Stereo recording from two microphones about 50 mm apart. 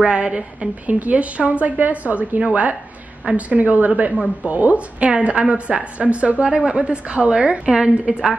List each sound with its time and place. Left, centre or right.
0.0 s a woman's voice: right